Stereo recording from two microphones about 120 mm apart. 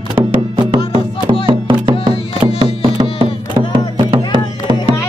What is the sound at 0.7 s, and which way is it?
Music, 50° right (ahead or behind).